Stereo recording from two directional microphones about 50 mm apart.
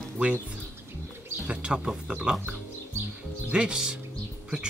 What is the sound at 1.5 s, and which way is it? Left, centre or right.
Speech, right.